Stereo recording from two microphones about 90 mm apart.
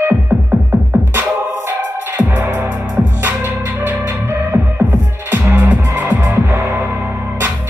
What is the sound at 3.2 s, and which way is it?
Music, 25° right (ahead or behind).